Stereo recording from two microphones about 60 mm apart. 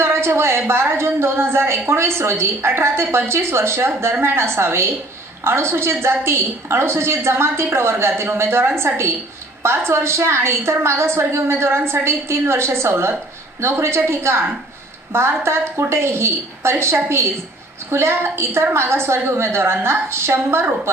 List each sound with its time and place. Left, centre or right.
0.0 s a woman's voice: right